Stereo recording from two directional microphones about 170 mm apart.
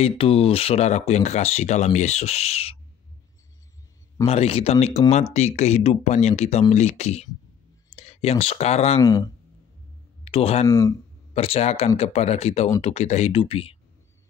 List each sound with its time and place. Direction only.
0.0 s speech: 35° left (ahead or behind)
4.3 s speech: 35° left (ahead or behind)
9.0 s speech: 20° left (ahead or behind)
10.2 s speech: 35° left (ahead or behind)
10.7 s speech: 20° left (ahead or behind)
11.3 s speech: 35° left (ahead or behind)